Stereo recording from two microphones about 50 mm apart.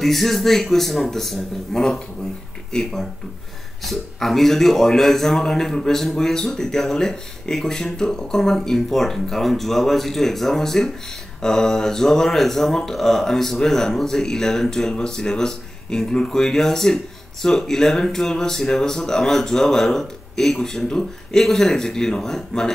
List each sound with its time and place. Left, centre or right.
0.0 s a man's voice: centre